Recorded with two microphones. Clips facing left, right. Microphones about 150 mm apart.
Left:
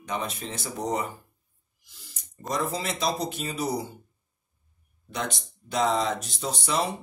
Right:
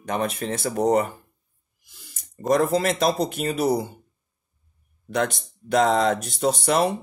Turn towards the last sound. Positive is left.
turn(degrees=-60)  # may be behind; listen again after turning